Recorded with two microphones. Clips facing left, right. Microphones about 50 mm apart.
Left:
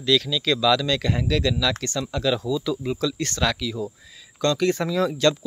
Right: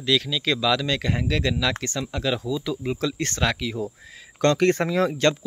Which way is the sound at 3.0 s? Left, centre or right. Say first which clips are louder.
Left 1 dB; right.